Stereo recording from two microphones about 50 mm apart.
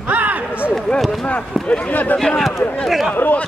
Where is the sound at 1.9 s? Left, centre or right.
Left.